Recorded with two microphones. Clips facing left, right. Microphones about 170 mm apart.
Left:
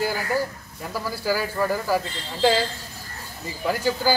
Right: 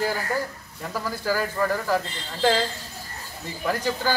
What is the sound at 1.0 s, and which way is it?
Speech, 10° left (ahead or behind).